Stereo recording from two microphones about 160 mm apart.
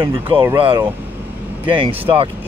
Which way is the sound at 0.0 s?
30° right (ahead or behind).